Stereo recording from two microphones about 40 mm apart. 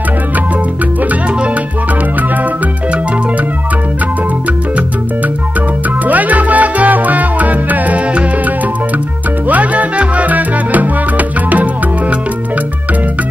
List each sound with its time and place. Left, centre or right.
6.0 s music: right
9.5 s music: right